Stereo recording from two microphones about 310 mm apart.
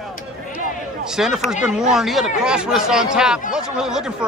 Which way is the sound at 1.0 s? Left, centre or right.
Centre.